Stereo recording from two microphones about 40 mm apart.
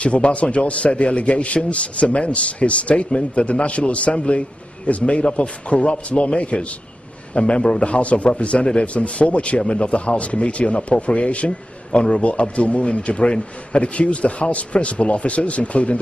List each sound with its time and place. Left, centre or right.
0.0 s a man's voice: left